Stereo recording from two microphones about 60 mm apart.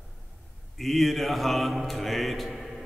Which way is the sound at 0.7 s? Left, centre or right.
Centre.